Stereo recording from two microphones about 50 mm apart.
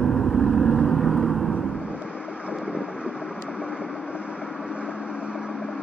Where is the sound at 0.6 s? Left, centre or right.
Centre.